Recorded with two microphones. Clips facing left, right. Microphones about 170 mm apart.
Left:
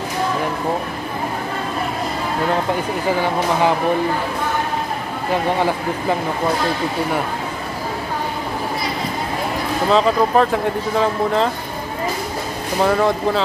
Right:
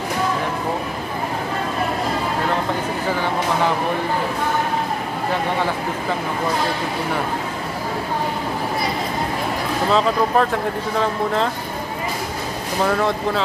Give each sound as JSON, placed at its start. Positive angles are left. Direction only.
{"t": 9.8, "sound": "speech", "side_deg": 0}
{"t": 12.8, "sound": "speech", "side_deg": 0}